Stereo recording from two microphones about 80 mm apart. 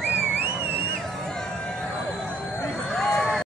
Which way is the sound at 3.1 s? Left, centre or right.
Centre.